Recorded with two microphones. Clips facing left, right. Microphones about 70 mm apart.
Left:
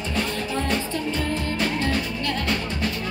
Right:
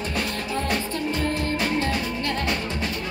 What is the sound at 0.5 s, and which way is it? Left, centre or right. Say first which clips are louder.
Music: even; right.